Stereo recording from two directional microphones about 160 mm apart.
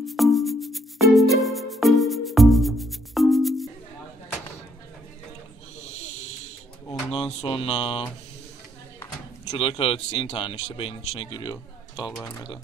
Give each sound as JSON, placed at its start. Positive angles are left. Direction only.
{"t": 0.0, "sound": "music", "side_deg": 0}
{"t": 7.1, "sound": "mantra", "side_deg": 35}
{"t": 9.5, "sound": "speech", "side_deg": 35}